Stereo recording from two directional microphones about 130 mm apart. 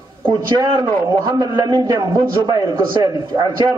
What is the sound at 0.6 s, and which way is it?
A man's voice, 30° right (ahead or behind).